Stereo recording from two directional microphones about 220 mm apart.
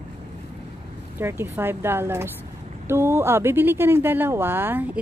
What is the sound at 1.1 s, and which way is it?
Speech, 10° right (ahead or behind).